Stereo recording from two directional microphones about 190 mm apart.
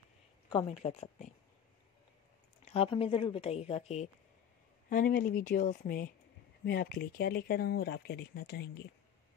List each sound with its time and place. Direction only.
0.5 s speech: 30° left (ahead or behind)
2.6 s speech: 30° left (ahead or behind); by 8.6 s 55° left (ahead or behind)